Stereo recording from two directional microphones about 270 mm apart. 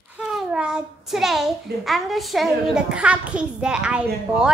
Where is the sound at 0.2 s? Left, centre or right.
Centre.